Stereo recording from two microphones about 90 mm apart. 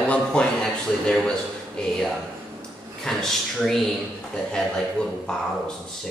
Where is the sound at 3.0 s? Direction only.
5° left (ahead or behind).